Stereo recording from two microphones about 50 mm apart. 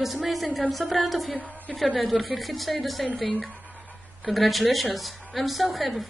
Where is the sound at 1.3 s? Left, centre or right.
Right.